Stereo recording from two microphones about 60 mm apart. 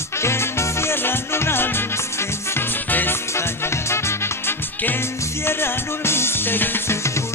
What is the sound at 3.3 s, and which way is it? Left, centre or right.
Music, left.